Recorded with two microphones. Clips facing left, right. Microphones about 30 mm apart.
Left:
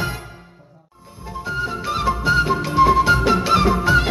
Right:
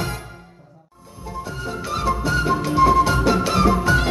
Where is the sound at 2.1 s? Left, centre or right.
Left.